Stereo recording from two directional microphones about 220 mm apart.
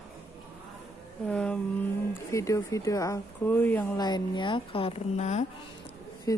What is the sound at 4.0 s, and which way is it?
A woman's voice, 20° left (ahead or behind).